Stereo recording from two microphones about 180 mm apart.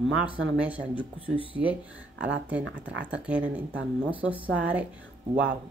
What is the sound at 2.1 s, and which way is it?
Speech, 90° right.